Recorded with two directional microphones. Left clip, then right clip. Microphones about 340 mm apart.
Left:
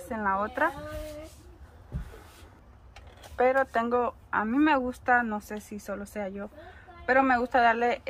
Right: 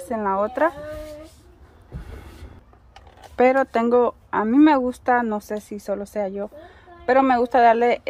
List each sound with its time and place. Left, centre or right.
0.1 s speech: right
3.3 s speech: right